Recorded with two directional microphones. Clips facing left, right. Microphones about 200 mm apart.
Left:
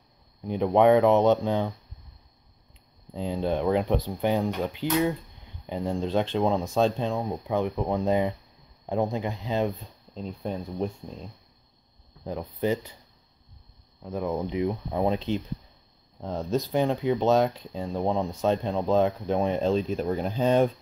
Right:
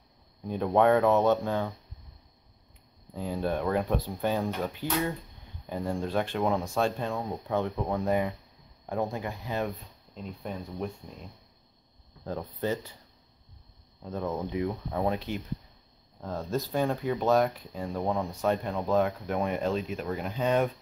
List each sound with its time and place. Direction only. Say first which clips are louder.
0.4 s speech: left 3 dB; 15° left (ahead or behind)
3.1 s speech: left 3 dB; 20° left (ahead or behind)
12.3 s speech: left 4 dB; 15° left (ahead or behind)
14.0 s speech: left 3 dB; 10° left (ahead or behind); by 20.7 s 30° left (ahead or behind)